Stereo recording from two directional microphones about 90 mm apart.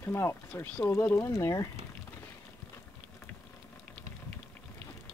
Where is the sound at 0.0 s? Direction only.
30° left (ahead or behind).